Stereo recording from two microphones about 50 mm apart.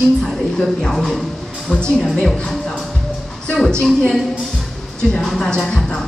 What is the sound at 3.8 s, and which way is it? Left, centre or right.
Speech, centre.